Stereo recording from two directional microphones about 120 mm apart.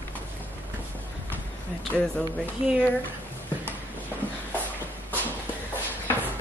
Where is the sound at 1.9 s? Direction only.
10° left (ahead or behind).